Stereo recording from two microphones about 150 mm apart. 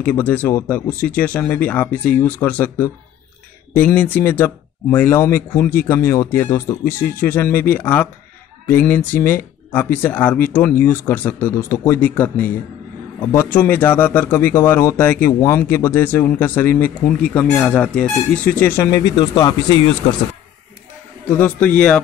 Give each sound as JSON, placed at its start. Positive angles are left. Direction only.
{"t": 0.0, "sound": "speech", "side_deg": 10}
{"t": 21.3, "sound": "speech", "side_deg": 10}